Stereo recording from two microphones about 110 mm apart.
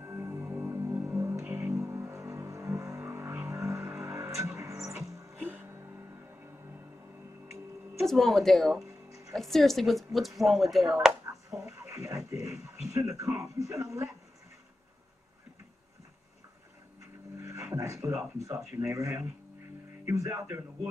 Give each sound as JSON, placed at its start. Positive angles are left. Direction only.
{"t": 0.0, "sound": "music", "side_deg": -25}
{"t": 5.4, "sound": "music", "side_deg": -15}
{"t": 8.0, "sound": "speech", "side_deg": 0}
{"t": 11.5, "sound": "music", "side_deg": -25}
{"t": 12.9, "sound": "a sound", "side_deg": -25}
{"t": 17.4, "sound": "a sound", "side_deg": -25}
{"t": 17.7, "sound": "speech", "side_deg": -25}